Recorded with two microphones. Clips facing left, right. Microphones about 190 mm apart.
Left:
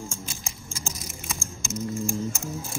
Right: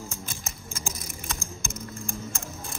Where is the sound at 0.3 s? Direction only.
50° right (ahead or behind).